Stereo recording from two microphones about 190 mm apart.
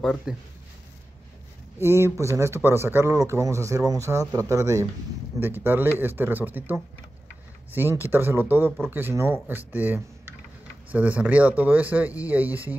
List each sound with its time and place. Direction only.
0.0 s speech: centre (ahead or behind)
1.8 s speech: 15° right (ahead or behind)